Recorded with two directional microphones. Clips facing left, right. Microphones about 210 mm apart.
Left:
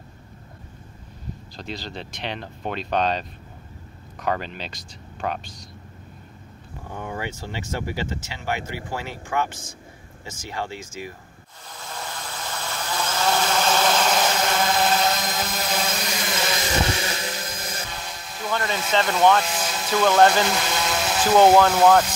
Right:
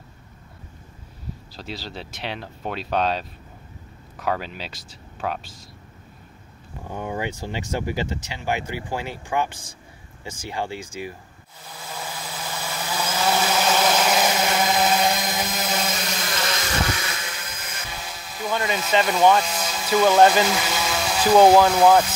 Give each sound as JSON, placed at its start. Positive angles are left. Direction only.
{"t": 1.6, "sound": "speech", "side_deg": -5}
{"t": 6.9, "sound": "speech", "side_deg": -20}
{"t": 11.7, "sound": "vehicle", "side_deg": -5}
{"t": 16.9, "sound": "a sound", "side_deg": 30}
{"t": 17.9, "sound": "dental drill", "side_deg": -5}
{"t": 19.5, "sound": "speech", "side_deg": 0}